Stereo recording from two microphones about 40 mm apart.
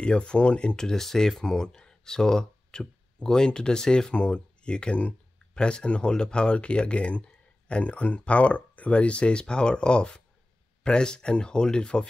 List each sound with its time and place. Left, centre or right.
0.0 s speech: left